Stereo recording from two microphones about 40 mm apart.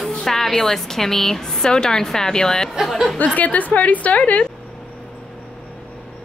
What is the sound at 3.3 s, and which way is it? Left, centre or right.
A woman's voice, left.